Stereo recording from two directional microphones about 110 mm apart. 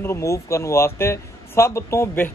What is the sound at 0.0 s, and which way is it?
A man's voice, 25° left (ahead or behind).